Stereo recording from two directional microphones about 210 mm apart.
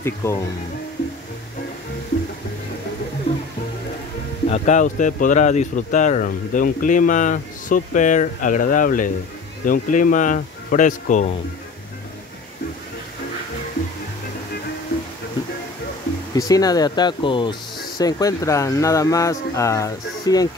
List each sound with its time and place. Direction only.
0.0 s speech: 10° left (ahead or behind)
4.5 s speech: 35° left (ahead or behind)
16.3 s speech: 15° left (ahead or behind)